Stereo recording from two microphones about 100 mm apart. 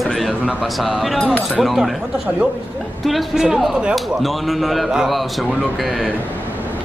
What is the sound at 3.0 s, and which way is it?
A man's voice, 5° right (ahead or behind).